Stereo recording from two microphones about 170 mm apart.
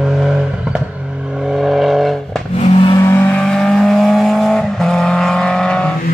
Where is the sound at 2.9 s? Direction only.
15° left (ahead or behind).